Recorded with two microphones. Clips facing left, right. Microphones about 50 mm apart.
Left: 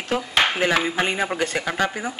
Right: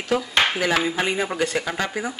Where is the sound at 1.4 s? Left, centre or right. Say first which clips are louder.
Even; left.